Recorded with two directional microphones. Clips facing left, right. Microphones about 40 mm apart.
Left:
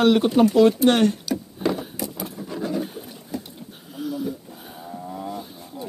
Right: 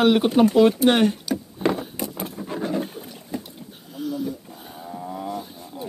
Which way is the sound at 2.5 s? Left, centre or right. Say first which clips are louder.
Right 1 dB; right.